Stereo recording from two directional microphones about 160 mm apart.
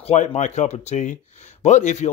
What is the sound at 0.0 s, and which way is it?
Speech, 40° left (ahead or behind).